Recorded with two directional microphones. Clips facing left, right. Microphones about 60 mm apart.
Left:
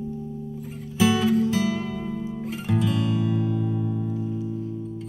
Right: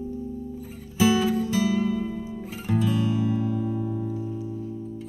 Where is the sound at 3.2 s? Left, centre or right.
Left.